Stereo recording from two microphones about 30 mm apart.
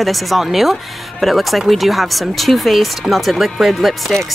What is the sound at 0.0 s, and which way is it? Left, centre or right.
Speech, centre.